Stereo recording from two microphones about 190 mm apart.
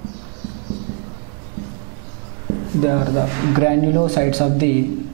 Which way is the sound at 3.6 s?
5° right (ahead or behind).